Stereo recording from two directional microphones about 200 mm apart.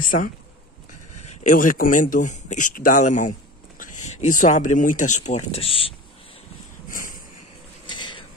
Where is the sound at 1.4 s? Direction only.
40° left (ahead or behind).